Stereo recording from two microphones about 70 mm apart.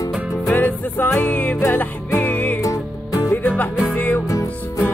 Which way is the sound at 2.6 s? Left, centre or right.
Left.